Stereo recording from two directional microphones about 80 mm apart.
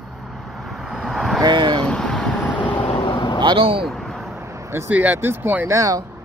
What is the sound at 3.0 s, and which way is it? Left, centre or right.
Vehicle, left.